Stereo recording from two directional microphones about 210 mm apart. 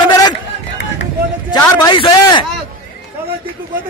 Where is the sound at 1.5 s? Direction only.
20° left (ahead or behind).